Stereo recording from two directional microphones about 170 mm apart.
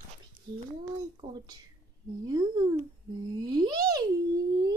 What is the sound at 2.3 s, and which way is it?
Speech, 25° right (ahead or behind).